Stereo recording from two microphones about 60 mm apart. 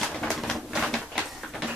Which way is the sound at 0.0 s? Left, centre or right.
Centre.